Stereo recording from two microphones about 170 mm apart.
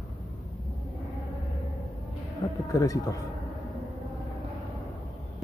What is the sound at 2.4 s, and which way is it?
Speech, 25° left (ahead or behind).